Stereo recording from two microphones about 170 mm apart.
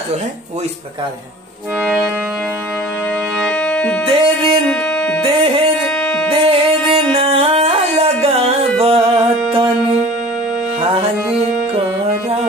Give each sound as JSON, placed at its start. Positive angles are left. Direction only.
{"t": 1.8, "sound": "music", "side_deg": 0}
{"t": 3.3, "sound": "music", "side_deg": 5}
{"t": 4.0, "sound": "music", "side_deg": -30}
{"t": 4.6, "sound": "music", "side_deg": 5}
{"t": 5.2, "sound": "music", "side_deg": -35}
{"t": 5.9, "sound": "music", "side_deg": 5}
{"t": 6.3, "sound": "music", "side_deg": -35}
{"t": 10.8, "sound": "music", "side_deg": -35}